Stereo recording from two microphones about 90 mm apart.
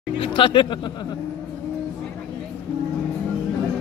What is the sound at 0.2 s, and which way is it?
Speech, 70° left (ahead or behind).